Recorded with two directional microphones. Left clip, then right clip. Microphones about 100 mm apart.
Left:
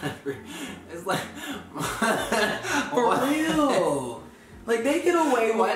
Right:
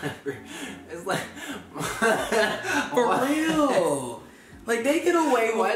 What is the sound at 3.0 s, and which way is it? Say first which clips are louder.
Speech: even; 15° right (ahead or behind).